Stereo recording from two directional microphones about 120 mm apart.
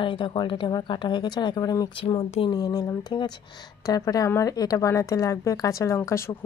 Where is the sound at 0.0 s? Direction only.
45° left (ahead or behind).